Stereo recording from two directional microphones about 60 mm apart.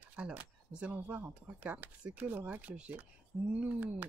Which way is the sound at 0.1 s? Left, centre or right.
Right.